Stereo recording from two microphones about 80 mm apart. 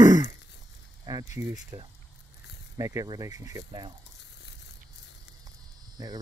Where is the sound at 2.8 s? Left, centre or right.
Right.